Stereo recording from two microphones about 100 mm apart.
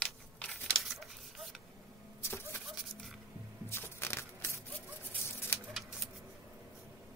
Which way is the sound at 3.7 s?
25° left (ahead or behind).